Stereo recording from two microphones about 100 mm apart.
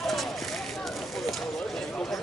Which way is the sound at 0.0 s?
Centre (ahead or behind).